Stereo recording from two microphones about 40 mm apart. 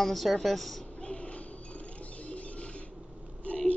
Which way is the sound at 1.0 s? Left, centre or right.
Left.